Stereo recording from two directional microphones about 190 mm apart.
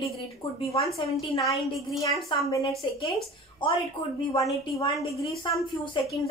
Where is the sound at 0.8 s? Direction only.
30° left (ahead or behind).